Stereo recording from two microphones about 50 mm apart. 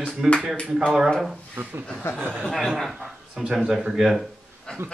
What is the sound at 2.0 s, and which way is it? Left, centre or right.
Speech, left.